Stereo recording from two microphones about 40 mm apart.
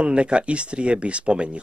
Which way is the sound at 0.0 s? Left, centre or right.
Right.